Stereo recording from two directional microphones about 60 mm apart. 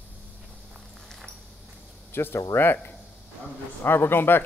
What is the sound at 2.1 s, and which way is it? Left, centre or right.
Sizzle, left.